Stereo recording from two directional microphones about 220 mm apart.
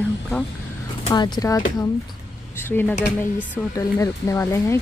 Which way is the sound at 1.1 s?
20° left (ahead or behind).